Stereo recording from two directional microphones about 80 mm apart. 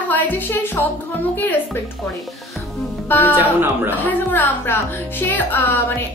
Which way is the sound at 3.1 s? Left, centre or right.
Left.